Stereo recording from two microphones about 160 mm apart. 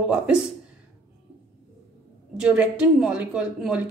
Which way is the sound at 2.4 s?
5° right (ahead or behind).